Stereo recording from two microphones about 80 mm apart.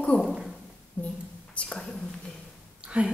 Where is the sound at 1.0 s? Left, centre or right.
Centre.